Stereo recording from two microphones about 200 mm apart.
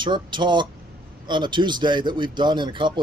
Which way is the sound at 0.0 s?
25° right (ahead or behind).